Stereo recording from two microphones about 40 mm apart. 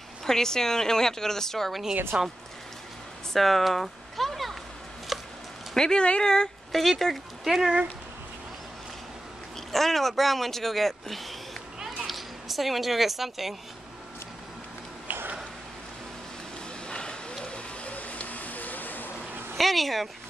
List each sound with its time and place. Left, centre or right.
0.2 s speech: centre
2.1 s speech: right
3.3 s a sound: centre
5.8 s speech: left
6.7 s speech: centre
9.7 s a woman's voice: centre
16.8 s a sound: left
17.5 s a sound: left
19.5 s speech: centre